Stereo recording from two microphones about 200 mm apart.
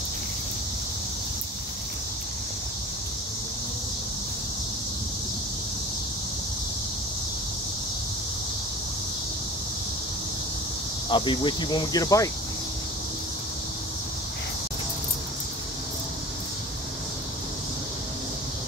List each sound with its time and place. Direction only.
11.1 s speech: 25° left (ahead or behind)